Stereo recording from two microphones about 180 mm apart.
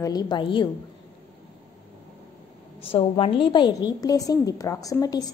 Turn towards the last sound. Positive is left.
turn(degrees=20)  # may be behind; listen again after turning